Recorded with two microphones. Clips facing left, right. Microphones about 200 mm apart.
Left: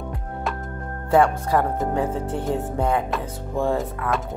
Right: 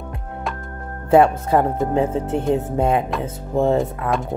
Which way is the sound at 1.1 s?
20° right (ahead or behind).